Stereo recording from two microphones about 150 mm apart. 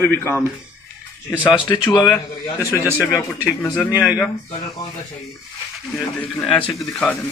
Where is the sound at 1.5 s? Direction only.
30° left (ahead or behind).